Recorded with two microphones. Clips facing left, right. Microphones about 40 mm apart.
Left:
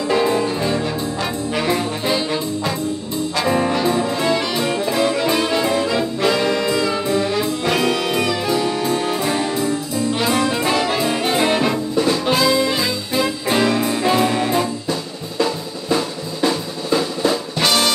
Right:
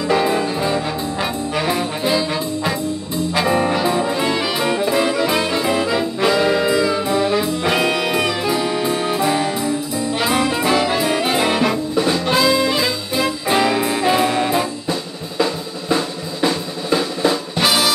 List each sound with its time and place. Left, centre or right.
0.1 s music: centre
3.3 s music: right
5.3 s brass instrument: centre
7.1 s music: centre
10.1 s brass instrument: centre
12.3 s music: centre
13.5 s music: centre